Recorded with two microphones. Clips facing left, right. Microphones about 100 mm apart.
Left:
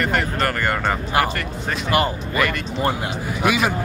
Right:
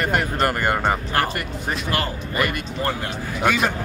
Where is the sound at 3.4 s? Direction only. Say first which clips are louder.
Even; 10° left (ahead or behind).